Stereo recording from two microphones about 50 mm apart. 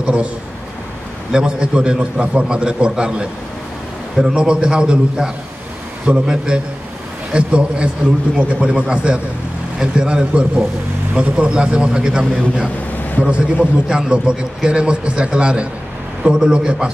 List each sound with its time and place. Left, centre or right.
0.0 s speech: right
1.3 s a man's voice: centre